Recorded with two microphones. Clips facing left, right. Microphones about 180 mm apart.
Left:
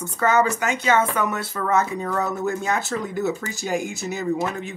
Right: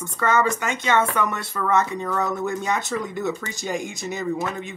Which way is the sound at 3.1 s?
5° left (ahead or behind).